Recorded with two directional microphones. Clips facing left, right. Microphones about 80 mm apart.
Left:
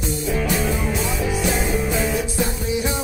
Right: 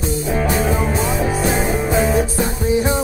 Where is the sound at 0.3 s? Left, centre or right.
Right.